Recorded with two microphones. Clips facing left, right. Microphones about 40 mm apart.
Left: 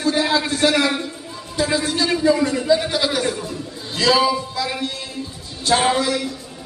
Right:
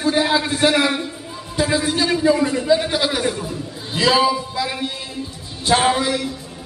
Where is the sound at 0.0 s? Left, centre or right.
Centre.